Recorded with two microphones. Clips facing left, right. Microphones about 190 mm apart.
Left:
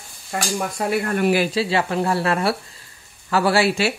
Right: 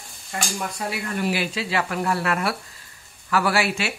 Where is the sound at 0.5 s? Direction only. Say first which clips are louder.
Left 10 dB; 50° left (ahead or behind).